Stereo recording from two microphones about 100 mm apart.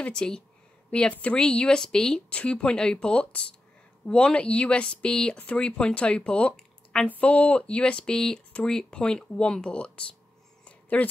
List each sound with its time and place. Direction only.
0.0 s speech: 10° left (ahead or behind)